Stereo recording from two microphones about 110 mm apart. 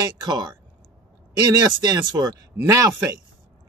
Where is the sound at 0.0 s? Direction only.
40° right (ahead or behind).